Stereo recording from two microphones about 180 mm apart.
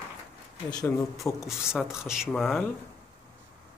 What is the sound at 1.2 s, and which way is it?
Speech, 5° right (ahead or behind).